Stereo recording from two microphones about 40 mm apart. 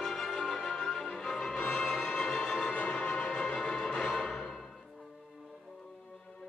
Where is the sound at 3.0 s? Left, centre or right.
Left; by 4.6 s centre.